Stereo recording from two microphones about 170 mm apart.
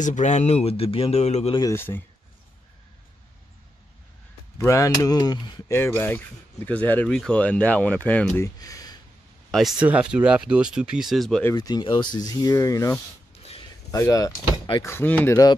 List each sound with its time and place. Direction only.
0.0 s speech: 45° left (ahead or behind)
1.6 s speech: 15° left (ahead or behind)
4.6 s speech: 15° left (ahead or behind)
8.5 s a sound: 20° left (ahead or behind)
9.5 s speech: centre (ahead or behind)
11.5 s speech: 25° left (ahead or behind)
13.3 s a sound: 35° left (ahead or behind)
13.9 s speech: 20° left (ahead or behind)